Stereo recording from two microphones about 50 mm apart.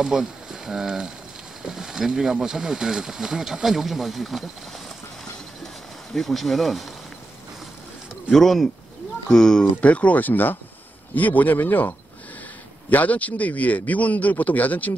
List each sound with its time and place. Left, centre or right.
0.0 s speech: centre
6.1 s speech: centre
8.3 s speech: centre
9.8 s speech: left
12.9 s speech: left